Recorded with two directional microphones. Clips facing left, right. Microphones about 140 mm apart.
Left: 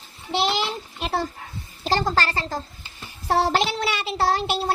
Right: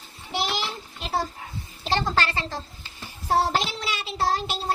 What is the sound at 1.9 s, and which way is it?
Speech, 40° left (ahead or behind).